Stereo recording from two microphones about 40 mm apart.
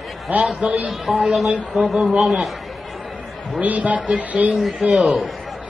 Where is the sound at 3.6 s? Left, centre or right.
Right.